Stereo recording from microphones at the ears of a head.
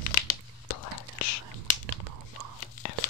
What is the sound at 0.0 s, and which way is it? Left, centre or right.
Whispering, left.